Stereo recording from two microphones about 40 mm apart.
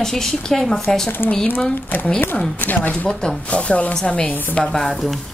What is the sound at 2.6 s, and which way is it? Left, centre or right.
Speech, left.